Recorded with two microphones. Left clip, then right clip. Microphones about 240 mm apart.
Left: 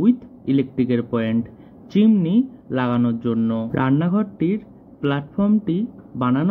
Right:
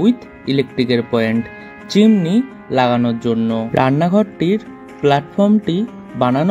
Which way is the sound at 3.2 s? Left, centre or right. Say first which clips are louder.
Right 5 dB; right.